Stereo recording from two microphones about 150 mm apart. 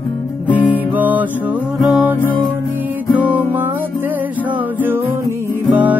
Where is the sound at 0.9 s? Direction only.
10° right (ahead or behind).